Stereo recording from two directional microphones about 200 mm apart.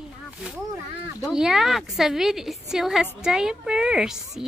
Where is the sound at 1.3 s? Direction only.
5° right (ahead or behind).